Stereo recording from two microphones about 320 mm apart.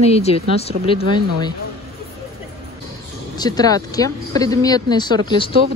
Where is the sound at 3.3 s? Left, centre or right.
Centre.